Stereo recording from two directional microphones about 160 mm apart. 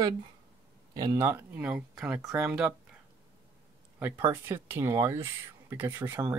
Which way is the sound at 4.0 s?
15° right (ahead or behind).